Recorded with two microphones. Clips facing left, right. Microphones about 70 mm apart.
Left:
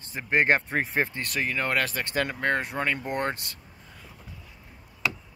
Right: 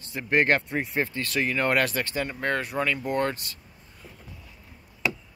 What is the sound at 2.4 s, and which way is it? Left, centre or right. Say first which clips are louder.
Speech: right 2 dB; left.